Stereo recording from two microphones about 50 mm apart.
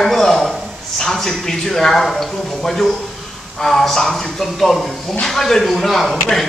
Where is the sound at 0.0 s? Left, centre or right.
Centre.